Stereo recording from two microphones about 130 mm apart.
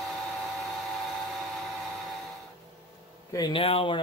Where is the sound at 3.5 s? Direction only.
45° left (ahead or behind).